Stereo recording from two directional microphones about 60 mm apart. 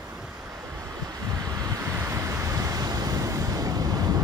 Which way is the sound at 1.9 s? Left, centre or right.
Right.